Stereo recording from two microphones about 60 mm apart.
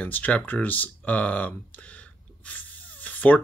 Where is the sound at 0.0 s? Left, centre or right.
Left.